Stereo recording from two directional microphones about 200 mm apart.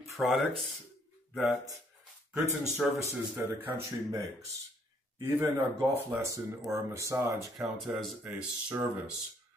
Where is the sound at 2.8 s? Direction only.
5° left (ahead or behind).